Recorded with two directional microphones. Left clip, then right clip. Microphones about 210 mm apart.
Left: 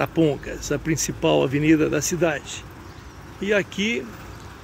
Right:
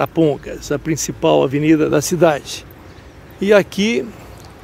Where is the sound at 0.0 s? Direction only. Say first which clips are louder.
Right 5 dB; 25° right (ahead or behind).